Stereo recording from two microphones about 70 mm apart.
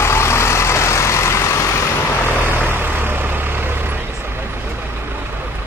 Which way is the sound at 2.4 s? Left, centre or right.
Right.